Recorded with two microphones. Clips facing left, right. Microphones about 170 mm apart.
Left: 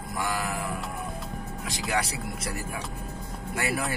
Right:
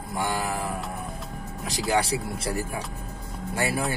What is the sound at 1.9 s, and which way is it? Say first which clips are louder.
Speech: right 5 dB; 30° right (ahead or behind).